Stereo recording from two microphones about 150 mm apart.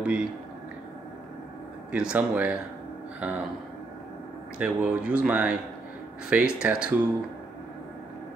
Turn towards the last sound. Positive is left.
turn(degrees=-5)  # may be behind; listen again after turning